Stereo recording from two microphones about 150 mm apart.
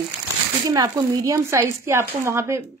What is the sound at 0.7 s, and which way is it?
A woman's voice, 25° right (ahead or behind).